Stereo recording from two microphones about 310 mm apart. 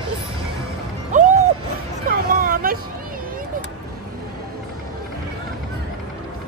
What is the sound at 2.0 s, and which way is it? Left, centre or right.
Vehicle, right.